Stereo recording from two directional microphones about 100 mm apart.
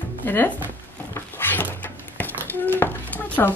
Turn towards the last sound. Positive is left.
turn(degrees=15)  # may be behind; listen again after turning